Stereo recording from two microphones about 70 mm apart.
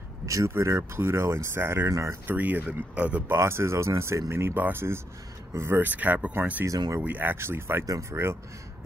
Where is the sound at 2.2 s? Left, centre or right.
Right.